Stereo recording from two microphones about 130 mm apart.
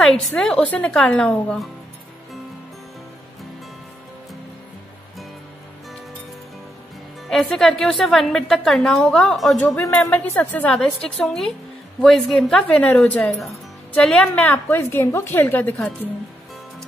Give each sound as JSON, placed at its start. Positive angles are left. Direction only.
{"t": 0.0, "sound": "a woman's voice", "side_deg": 0}
{"t": 7.2, "sound": "a woman's voice", "side_deg": 0}